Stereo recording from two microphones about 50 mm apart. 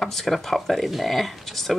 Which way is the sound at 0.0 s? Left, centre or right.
Centre.